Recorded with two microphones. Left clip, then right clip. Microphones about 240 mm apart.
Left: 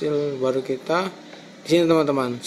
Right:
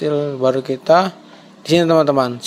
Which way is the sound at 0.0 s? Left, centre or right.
Right.